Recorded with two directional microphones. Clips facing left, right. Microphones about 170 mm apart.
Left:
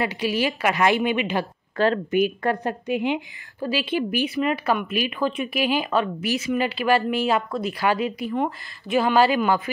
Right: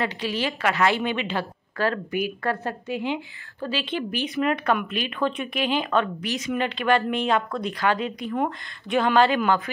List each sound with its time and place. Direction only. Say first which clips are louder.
0.0 s a woman's voice: left 3 dB; 10° left (ahead or behind)
1.8 s a woman's voice: left 5 dB; 25° left (ahead or behind); by 9.6 s 5° left (ahead or behind)